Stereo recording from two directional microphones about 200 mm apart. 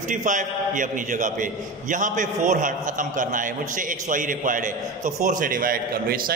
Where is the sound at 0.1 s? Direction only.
40° right (ahead or behind).